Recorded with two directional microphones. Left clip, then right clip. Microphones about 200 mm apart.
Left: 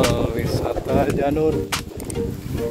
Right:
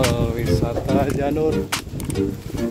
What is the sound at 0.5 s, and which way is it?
Speech, 15° left (ahead or behind).